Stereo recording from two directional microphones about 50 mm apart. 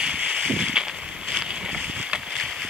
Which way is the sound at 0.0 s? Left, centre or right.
Right.